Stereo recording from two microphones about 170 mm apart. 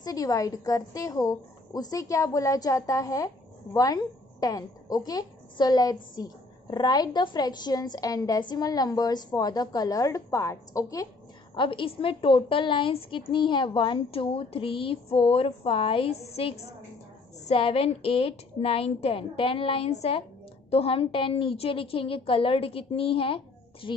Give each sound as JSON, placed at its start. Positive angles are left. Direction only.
{"t": 0.0, "sound": "a woman's voice", "side_deg": 20}